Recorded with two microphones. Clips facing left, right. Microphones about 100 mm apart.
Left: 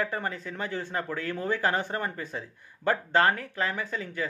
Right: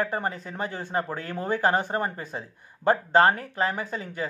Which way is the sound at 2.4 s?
35° right (ahead or behind).